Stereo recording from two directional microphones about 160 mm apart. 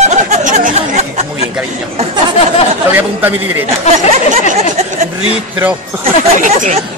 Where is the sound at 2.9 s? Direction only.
10° right (ahead or behind).